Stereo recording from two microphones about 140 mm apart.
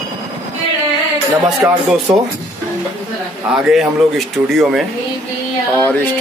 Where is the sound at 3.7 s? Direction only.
Centre (ahead or behind).